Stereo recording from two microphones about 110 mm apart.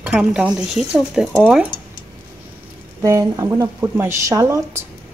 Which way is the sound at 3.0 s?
30° right (ahead or behind).